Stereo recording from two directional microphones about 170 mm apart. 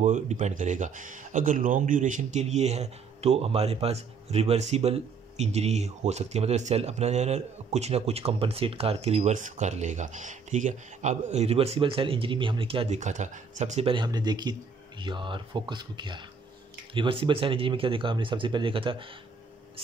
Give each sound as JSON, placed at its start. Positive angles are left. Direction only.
{"t": 0.0, "sound": "speech", "side_deg": -45}